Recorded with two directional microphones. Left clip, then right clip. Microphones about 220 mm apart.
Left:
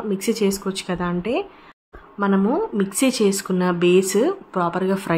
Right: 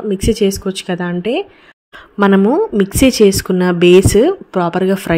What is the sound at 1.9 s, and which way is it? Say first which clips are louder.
Speech: right 9 dB; 35° right (ahead or behind).